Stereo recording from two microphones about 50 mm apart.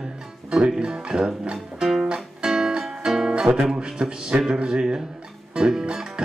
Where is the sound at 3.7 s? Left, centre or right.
Centre.